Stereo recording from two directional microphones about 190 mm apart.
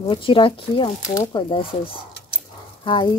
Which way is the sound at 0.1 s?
25° left (ahead or behind).